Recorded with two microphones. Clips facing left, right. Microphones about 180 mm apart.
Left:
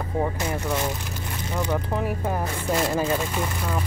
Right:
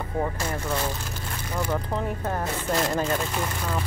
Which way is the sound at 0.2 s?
10° left (ahead or behind).